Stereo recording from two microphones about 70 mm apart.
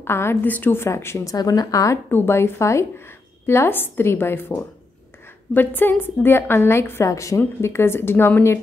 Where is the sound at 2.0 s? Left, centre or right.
Left.